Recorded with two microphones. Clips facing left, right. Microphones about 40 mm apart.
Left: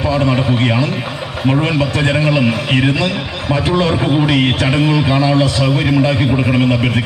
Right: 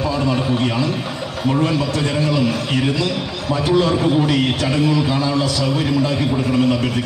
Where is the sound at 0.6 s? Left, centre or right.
Left.